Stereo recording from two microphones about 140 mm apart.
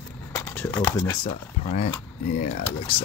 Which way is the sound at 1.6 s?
40° left (ahead or behind).